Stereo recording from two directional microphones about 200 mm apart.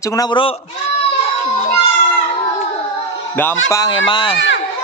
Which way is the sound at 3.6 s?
15° left (ahead or behind).